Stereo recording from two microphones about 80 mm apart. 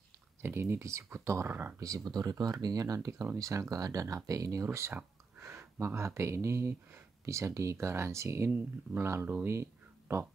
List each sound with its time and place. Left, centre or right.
0.4 s speech: right
1.5 s speech: right
1.8 s speech: right
2.1 s speech: right
4.7 s a sound: right
5.9 s speech: right
9.5 s a sound: right